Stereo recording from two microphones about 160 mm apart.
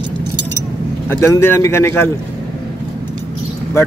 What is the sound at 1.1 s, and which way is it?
Speech, 15° left (ahead or behind).